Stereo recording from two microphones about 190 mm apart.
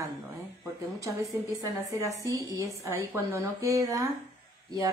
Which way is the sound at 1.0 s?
15° right (ahead or behind).